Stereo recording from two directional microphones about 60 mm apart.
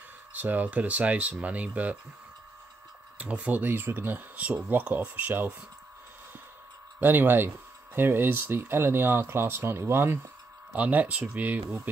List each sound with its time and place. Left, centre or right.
0.3 s speech: right
3.2 s speech: right
7.0 s speech: right
10.8 s speech: right